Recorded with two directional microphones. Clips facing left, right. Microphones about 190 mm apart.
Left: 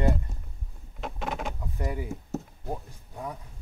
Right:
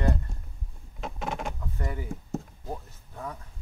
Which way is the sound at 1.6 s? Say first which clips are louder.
Left 2 dB; 15° left (ahead or behind).